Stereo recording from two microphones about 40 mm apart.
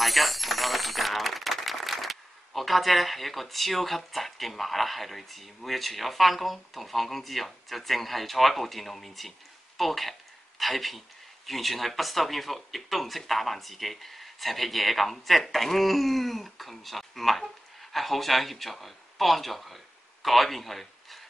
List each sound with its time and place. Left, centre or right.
0.0 s speech: centre